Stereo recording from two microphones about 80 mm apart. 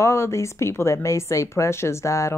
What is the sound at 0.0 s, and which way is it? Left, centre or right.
Speech, left.